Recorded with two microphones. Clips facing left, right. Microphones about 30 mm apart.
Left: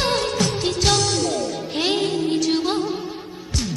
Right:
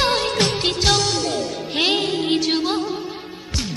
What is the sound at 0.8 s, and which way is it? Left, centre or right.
Music, centre.